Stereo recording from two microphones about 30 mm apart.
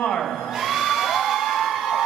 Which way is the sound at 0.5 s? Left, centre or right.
Centre.